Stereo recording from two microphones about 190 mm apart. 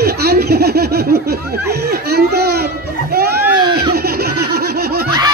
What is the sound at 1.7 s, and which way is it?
Baby cry, 55° right (ahead or behind).